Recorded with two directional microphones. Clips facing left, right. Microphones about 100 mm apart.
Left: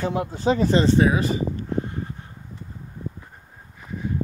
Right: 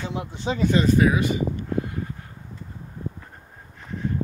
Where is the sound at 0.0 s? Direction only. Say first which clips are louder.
Left 6 dB; 40° left (ahead or behind).